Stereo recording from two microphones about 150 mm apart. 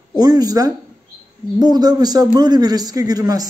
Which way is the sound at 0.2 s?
25° right (ahead or behind).